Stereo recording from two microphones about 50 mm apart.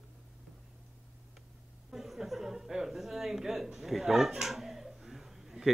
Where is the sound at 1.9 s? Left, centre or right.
Centre.